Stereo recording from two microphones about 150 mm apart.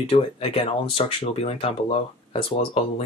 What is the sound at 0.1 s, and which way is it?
Speech, 40° left (ahead or behind).